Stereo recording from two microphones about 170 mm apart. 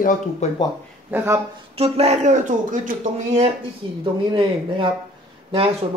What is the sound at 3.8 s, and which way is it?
Speech, 30° right (ahead or behind).